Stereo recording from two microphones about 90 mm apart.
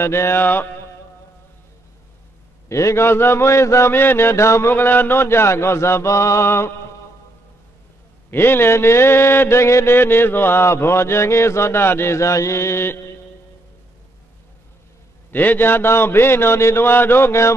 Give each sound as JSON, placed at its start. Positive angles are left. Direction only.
{"t": 0.0, "sound": "mantra", "side_deg": 30}
{"t": 2.7, "sound": "mantra", "side_deg": 35}
{"t": 8.3, "sound": "mantra", "side_deg": 25}
{"t": 15.3, "sound": "mantra", "side_deg": 20}